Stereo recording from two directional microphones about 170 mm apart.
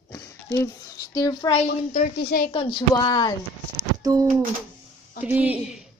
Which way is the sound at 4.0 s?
20° right (ahead or behind).